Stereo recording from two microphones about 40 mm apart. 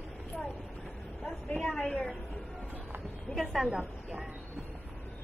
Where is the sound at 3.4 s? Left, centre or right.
Centre.